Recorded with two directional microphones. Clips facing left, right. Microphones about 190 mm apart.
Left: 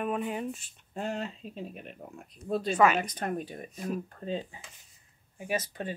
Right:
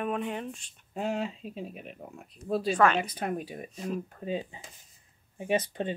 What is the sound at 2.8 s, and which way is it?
Speech, 5° left (ahead or behind).